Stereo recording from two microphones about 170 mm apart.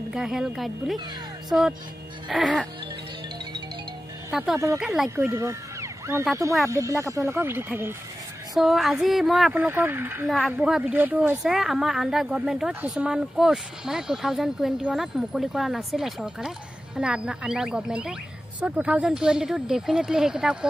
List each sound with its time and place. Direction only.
0.1 s speech: 5° right (ahead or behind)
4.3 s speech: 5° right (ahead or behind)
5.1 s speech: 15° right (ahead or behind)
8.5 s speech: centre (ahead or behind)